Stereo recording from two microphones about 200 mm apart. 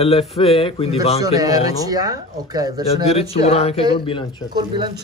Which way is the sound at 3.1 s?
30° left (ahead or behind).